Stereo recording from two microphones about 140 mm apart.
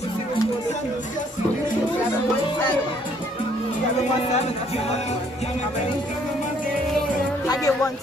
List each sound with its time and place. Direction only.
7.4 s speech: 25° left (ahead or behind)